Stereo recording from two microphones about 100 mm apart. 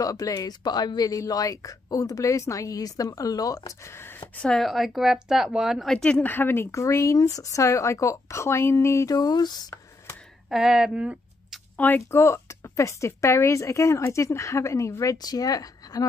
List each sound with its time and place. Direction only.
0.0 s a woman's voice: 35° left (ahead or behind)
4.4 s speech: 5° left (ahead or behind); by 9.1 s 30° left (ahead or behind)
9.1 s speech: 45° left (ahead or behind)
10.5 s speech: 5° right (ahead or behind)
11.7 s speech: 15° left (ahead or behind)
12.1 s a woman's voice: 30° left (ahead or behind)